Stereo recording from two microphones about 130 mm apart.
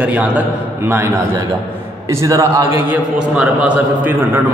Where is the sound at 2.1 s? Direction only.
25° right (ahead or behind).